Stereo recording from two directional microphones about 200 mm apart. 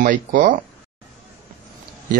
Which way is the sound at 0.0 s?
45° right (ahead or behind).